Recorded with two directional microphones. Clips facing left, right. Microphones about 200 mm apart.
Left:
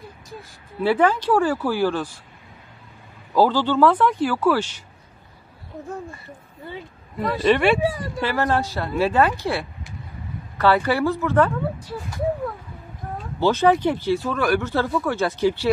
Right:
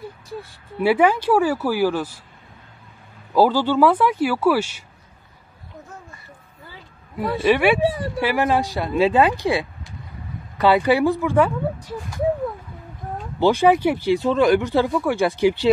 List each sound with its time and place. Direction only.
0.8 s speech: 10° right (ahead or behind)
3.3 s speech: 10° right (ahead or behind)
7.2 s speech: 5° right (ahead or behind)
13.4 s speech: 15° right (ahead or behind)